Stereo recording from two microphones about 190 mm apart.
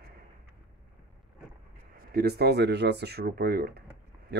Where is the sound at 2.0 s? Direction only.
55° right (ahead or behind).